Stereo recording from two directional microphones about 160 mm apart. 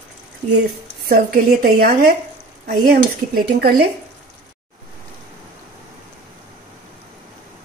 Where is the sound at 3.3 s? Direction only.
80° right.